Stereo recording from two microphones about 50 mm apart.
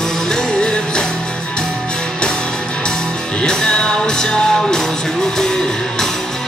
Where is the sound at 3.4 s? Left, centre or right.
Centre.